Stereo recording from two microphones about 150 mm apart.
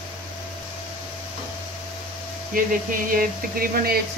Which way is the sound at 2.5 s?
70° right (ahead or behind).